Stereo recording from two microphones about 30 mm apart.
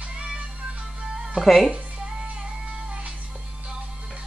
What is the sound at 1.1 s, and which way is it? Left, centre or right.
Music, right.